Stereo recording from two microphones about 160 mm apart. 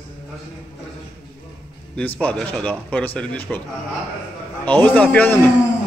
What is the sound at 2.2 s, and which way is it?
Speech, 10° left (ahead or behind).